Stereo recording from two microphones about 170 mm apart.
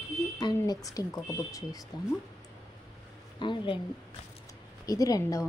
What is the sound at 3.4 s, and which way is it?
Speech, 30° left (ahead or behind).